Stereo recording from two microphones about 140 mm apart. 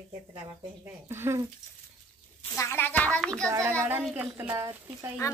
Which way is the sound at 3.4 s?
20° right (ahead or behind).